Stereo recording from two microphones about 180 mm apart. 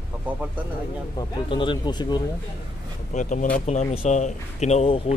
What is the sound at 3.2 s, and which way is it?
Speech, 45° left (ahead or behind).